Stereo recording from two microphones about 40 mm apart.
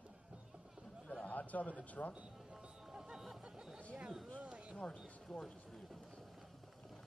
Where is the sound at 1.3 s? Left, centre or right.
Left.